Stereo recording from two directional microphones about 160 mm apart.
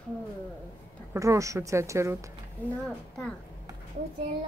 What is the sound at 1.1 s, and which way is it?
Speech, 20° right (ahead or behind).